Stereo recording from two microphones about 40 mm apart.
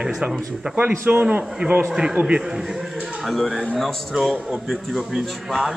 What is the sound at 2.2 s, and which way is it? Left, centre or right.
Speech, right.